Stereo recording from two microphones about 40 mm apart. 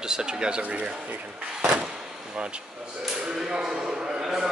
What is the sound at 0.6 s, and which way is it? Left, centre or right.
Speech, right.